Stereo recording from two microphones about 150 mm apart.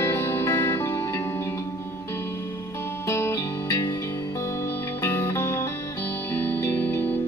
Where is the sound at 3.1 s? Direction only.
20° left (ahead or behind).